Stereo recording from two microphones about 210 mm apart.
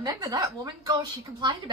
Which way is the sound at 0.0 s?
15° right (ahead or behind).